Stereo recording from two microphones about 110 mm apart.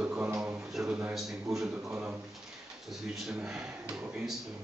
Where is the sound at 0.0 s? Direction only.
20° right (ahead or behind).